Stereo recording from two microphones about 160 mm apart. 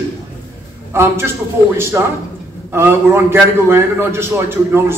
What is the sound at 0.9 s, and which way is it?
A man's voice, 15° right (ahead or behind).